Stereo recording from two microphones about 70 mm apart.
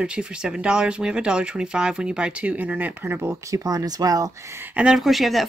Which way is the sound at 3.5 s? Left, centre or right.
Right.